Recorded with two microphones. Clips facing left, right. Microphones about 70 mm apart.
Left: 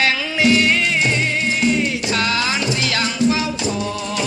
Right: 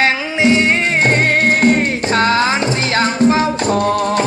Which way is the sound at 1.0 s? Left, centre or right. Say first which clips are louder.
Right 6 dB; right.